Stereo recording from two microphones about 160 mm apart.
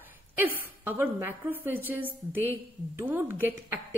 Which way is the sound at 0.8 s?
10° right (ahead or behind).